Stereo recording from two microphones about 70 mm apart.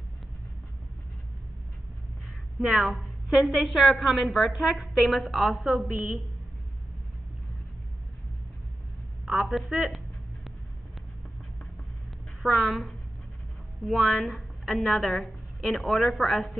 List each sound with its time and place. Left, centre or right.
2.7 s a woman's voice: centre
5.9 s a woman's voice: right
9.2 s a woman's voice: centre
9.8 s a sound: centre
12.4 s a woman's voice: centre